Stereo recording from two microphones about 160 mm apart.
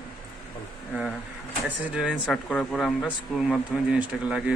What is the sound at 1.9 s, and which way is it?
A man's voice, centre (ahead or behind).